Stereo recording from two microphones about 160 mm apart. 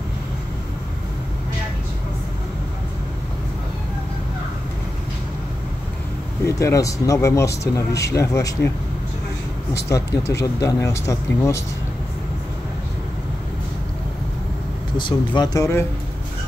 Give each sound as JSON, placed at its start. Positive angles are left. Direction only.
{"t": 6.4, "sound": "speech", "side_deg": 20}
{"t": 9.8, "sound": "speech", "side_deg": 20}
{"t": 15.0, "sound": "speech", "side_deg": 25}